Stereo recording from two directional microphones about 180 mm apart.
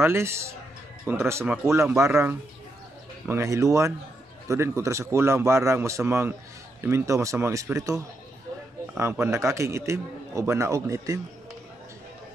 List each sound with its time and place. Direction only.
0.0 s a man's voice: 15° right (ahead or behind)